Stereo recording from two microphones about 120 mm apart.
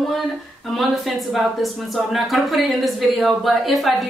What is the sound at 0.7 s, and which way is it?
A woman's voice, centre (ahead or behind).